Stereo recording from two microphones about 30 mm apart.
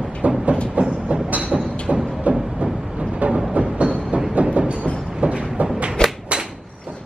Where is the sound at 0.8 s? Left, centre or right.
Right.